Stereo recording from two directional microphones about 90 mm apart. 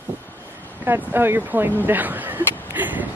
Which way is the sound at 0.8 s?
25° right (ahead or behind).